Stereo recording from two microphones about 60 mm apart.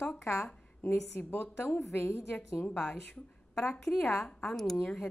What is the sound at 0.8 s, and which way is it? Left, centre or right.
Speech, left.